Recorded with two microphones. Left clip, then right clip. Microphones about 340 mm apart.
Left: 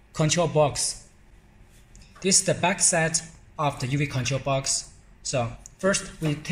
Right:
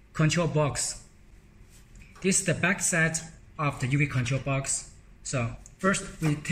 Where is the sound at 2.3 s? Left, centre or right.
Centre.